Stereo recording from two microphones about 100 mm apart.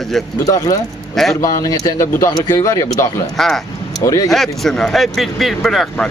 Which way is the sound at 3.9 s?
35° left (ahead or behind).